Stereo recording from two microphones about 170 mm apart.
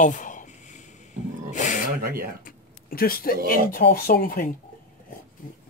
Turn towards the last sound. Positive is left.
turn(degrees=55)  # may be behind; listen again after turning